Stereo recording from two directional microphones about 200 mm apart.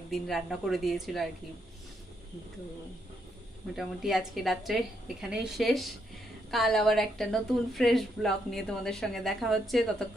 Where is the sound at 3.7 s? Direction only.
Centre (ahead or behind).